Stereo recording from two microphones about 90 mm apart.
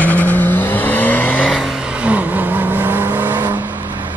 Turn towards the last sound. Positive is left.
turn(degrees=-20)  # may be behind; listen again after turning